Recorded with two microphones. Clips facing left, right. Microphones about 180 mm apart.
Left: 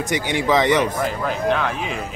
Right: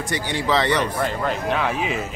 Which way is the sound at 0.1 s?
15° left (ahead or behind).